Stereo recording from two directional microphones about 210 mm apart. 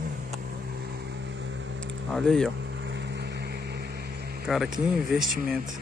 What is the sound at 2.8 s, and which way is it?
Vehicle, 55° right (ahead or behind).